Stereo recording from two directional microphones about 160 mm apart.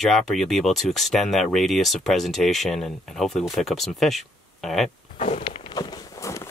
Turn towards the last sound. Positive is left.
turn(degrees=20)  # may be behind; listen again after turning